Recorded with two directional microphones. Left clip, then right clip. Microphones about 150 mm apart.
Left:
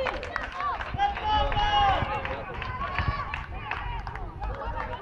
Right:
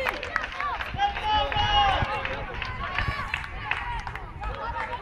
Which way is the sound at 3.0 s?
10° right (ahead or behind).